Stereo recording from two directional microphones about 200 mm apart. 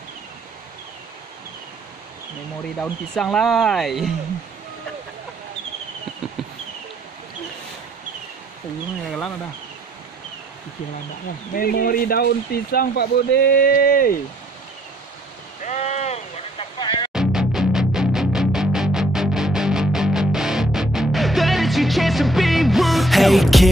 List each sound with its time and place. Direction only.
2.8 s speech: 5° left (ahead or behind)
11.5 s speech: 45° left (ahead or behind)
15.6 s sheep: 35° left (ahead or behind)
17.1 s music: 5° right (ahead or behind)